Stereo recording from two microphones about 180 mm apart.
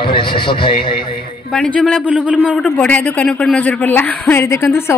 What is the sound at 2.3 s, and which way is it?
A woman's voice, 5° left (ahead or behind).